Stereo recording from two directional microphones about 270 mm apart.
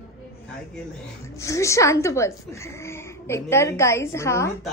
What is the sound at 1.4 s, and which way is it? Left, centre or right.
A woman's voice, centre.